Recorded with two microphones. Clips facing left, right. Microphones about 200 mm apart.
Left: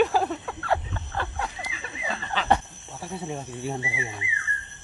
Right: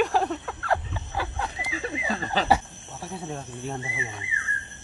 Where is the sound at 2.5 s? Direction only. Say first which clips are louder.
Right 1 dB; centre (ahead or behind).